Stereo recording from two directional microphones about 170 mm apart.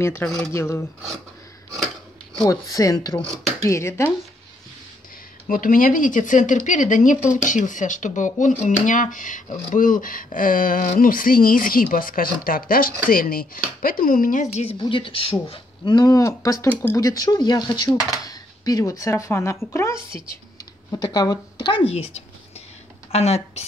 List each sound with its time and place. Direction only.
0.0 s speech: 15° left (ahead or behind)
2.4 s speech: 20° left (ahead or behind)
5.5 s speech: 50° left (ahead or behind); by 23.6 s 35° left (ahead or behind)